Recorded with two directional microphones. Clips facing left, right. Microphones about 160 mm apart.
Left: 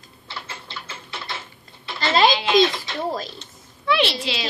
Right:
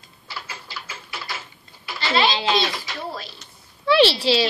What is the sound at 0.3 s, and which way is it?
Typewriter, 25° left (ahead or behind).